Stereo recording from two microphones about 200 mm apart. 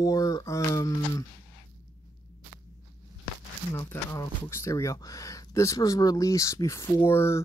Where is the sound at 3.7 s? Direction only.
15° left (ahead or behind).